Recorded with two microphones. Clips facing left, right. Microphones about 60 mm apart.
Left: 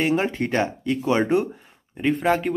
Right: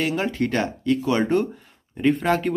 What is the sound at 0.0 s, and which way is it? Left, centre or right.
A man's voice, left.